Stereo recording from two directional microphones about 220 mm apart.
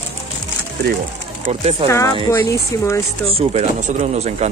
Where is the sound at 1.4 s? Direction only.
25° right (ahead or behind).